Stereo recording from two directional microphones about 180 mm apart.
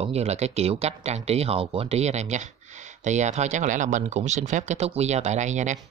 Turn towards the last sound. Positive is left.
turn(degrees=-40)  # may be behind; listen again after turning